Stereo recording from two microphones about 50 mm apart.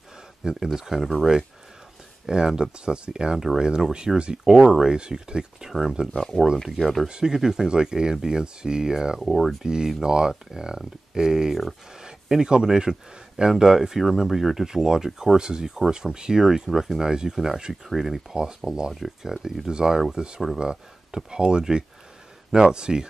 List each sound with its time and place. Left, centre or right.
0.4 s speech: centre
2.2 s speech: centre
4.1 s speech: centre
6.1 s speech: centre
7.1 s speech: centre
9.2 s speech: centre
9.6 s speech: centre
18.3 s speech: centre